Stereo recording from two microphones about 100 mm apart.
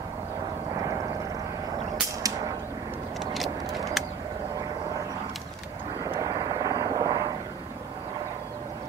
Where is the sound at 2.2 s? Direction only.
35° right (ahead or behind).